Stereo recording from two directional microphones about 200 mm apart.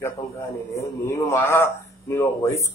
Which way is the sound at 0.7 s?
15° left (ahead or behind).